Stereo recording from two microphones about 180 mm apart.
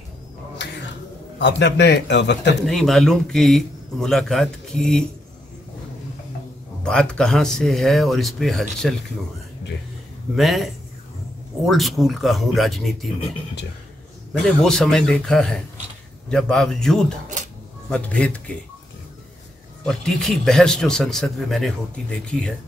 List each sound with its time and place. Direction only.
1.4 s a man's voice: 70° left (ahead or behind)
2.6 s a man's voice: centre (ahead or behind)
6.8 s a man's voice: 5° left (ahead or behind)
10.3 s a man's voice: centre (ahead or behind)
14.4 s a man's voice: 5° left (ahead or behind)
19.8 s a man's voice: 5° left (ahead or behind)